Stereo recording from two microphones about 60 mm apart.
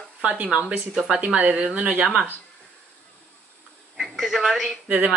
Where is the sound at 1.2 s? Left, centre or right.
Right.